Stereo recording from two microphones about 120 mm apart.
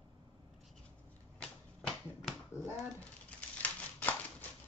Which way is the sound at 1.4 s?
Centre (ahead or behind).